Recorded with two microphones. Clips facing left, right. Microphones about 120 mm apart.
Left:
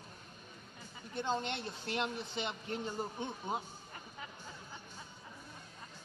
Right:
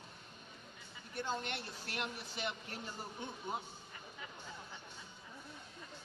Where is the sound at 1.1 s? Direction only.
20° left (ahead or behind).